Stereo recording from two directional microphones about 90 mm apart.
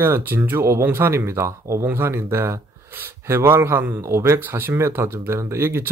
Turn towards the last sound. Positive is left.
turn(degrees=-25)  # may be behind; listen again after turning